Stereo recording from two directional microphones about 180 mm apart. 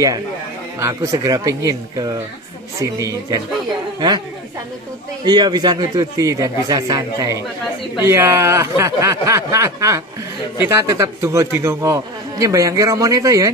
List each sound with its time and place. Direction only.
0.7 s a man's voice: 15° right (ahead or behind)
5.2 s a man's voice: 25° right (ahead or behind)